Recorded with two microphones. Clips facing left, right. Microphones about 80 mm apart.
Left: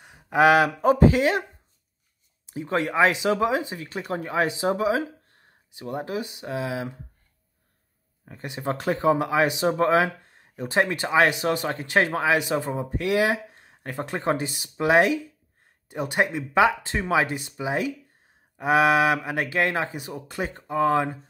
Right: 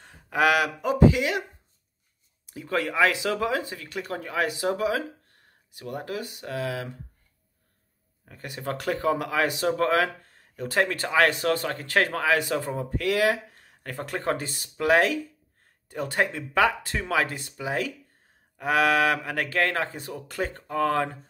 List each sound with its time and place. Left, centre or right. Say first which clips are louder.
0.0 s speech: left 4 dB; centre; by 1.4 s left
2.4 s speech: left 2 dB; left
8.3 s speech: left 3 dB; left